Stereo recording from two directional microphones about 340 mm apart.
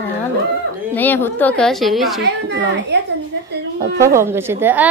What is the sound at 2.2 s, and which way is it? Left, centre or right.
Speech, right.